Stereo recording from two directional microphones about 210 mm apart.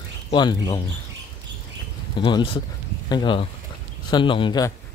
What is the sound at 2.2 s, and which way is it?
Speech, 25° left (ahead or behind).